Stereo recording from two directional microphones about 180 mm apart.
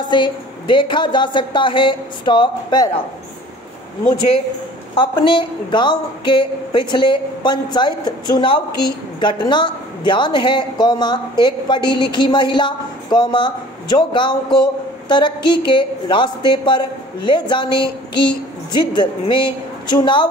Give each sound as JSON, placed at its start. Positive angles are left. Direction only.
{"t": 0.1, "sound": "a woman's voice", "side_deg": 25}
{"t": 4.9, "sound": "a woman's voice", "side_deg": 30}